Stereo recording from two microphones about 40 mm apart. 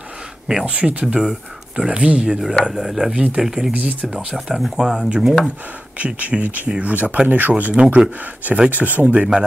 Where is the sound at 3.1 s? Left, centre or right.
Right.